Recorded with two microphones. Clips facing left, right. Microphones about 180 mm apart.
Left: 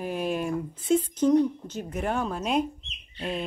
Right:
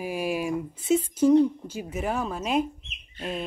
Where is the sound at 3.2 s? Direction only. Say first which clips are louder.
Left 1 dB; 50° right (ahead or behind).